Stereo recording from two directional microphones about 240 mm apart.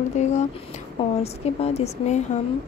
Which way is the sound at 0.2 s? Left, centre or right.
Left.